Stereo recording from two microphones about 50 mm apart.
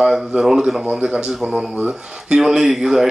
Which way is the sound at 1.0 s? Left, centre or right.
Right.